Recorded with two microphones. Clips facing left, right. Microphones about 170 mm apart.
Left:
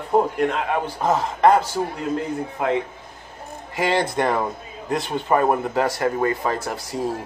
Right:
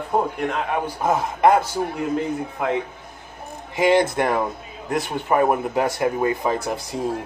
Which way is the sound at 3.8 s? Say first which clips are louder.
Right 3 dB; 15° right (ahead or behind).